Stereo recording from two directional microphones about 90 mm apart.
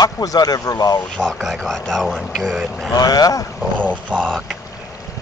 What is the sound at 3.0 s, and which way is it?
Speech, 45° left (ahead or behind).